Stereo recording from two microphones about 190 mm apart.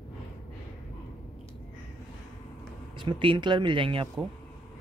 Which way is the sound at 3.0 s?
25° right (ahead or behind).